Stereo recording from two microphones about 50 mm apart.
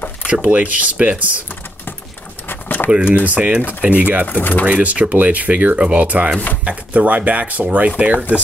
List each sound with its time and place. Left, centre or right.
0.3 s speech: right
2.4 s keys jangling: left
2.9 s speech: centre
4.3 s speech: left
4.6 s speech: right